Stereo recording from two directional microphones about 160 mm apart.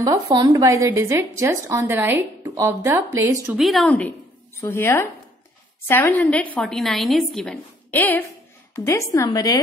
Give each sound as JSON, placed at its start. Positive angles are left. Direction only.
{"t": 0.0, "sound": "speech", "side_deg": -25}
{"t": 3.5, "sound": "speech", "side_deg": 0}
{"t": 4.6, "sound": "a woman's voice", "side_deg": 15}